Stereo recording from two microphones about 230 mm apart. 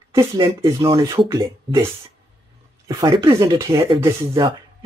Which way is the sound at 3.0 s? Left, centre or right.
Centre.